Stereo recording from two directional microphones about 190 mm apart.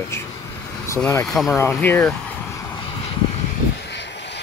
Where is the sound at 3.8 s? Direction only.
65° left (ahead or behind).